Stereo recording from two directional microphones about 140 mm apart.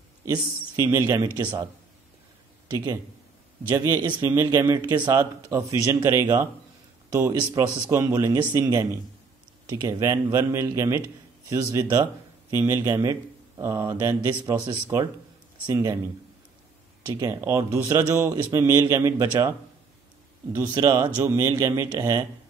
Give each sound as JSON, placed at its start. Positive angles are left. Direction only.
{"t": 0.2, "sound": "speech", "side_deg": -25}
{"t": 2.7, "sound": "speech", "side_deg": -30}
{"t": 5.5, "sound": "speech", "side_deg": -20}
{"t": 17.1, "sound": "speech", "side_deg": -20}
{"t": 20.5, "sound": "speech", "side_deg": -30}
{"t": 21.2, "sound": "speech", "side_deg": -20}